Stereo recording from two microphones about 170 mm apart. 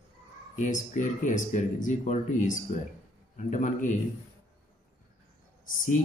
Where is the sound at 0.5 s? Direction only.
50° left (ahead or behind).